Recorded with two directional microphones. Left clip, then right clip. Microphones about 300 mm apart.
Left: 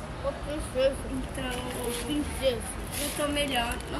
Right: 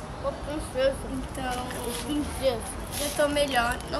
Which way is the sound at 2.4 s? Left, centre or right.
Centre.